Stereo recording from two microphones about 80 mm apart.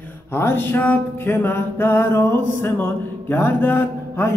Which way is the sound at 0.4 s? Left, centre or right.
Left.